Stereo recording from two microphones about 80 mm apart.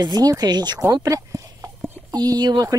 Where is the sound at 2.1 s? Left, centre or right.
Right.